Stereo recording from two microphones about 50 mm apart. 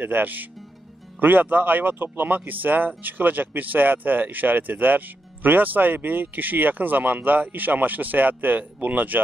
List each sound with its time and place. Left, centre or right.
0.0 s speech: right